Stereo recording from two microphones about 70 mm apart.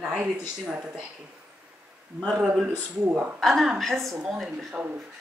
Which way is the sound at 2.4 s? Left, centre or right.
Centre.